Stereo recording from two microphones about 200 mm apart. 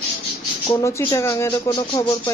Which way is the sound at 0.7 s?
15° left (ahead or behind).